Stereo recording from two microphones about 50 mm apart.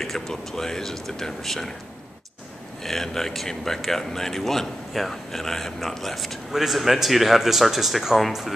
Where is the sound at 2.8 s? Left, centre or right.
Centre.